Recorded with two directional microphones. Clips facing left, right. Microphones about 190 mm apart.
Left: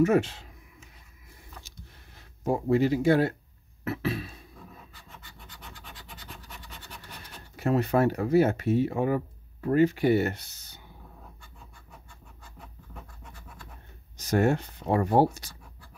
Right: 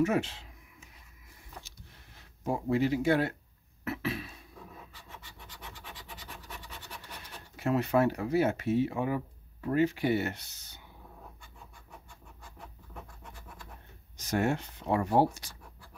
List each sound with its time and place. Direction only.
0.0 s speech: 45° left (ahead or behind)
2.4 s speech: 40° left (ahead or behind)
3.8 s a sound: 35° left (ahead or behind)
7.5 s speech: 40° left (ahead or behind)
14.1 s speech: 40° left (ahead or behind)